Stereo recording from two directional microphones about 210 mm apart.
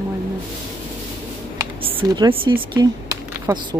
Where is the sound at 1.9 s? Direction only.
20° right (ahead or behind).